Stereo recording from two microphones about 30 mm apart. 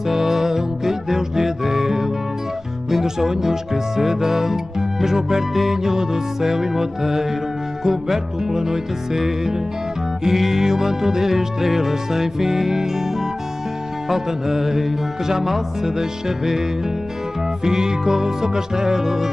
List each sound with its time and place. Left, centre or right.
0.1 s music: centre
2.9 s speech: centre
14.0 s speech: centre
17.6 s speech: centre